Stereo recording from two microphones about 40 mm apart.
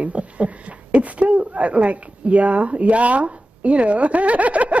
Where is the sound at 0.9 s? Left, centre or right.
Right.